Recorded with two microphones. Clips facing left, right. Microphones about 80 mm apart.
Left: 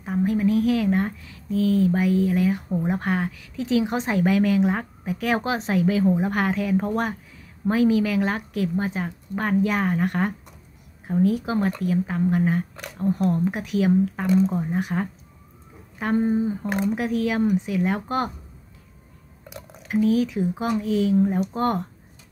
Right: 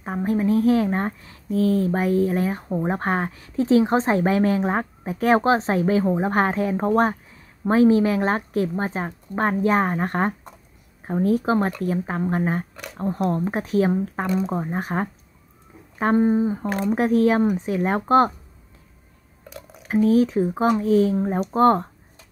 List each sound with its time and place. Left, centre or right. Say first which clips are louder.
0.0 s a woman's voice: even; right
19.8 s a woman's voice: right 3 dB; right